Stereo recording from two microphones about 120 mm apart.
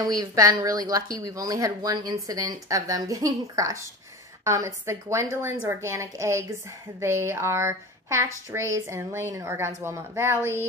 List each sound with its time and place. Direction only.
0.0 s speech: 30° right (ahead or behind)